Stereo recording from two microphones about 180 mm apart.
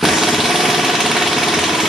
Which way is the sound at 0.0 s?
Centre (ahead or behind).